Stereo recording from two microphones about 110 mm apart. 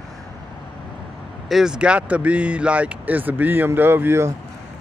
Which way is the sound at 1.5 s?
5° right (ahead or behind).